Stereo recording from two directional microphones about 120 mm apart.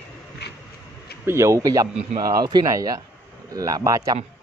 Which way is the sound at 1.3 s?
25° right (ahead or behind).